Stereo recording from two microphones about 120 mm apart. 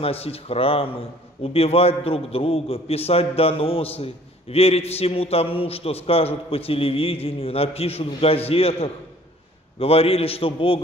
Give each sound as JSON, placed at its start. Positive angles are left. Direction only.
{"t": 0.0, "sound": "a man's voice", "side_deg": 55}